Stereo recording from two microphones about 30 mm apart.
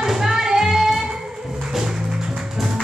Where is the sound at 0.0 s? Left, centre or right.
Centre.